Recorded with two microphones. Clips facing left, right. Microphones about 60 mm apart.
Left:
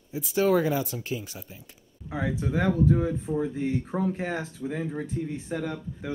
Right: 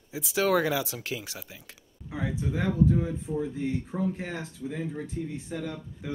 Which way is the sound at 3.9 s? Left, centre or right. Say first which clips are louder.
Left 2 dB; left.